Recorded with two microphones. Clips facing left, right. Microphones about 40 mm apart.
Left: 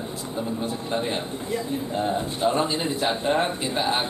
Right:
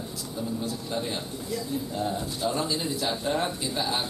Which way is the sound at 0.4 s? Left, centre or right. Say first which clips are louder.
Left 3 dB; left.